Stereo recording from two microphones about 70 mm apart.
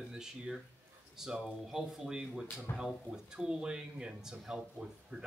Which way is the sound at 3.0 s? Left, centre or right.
Centre.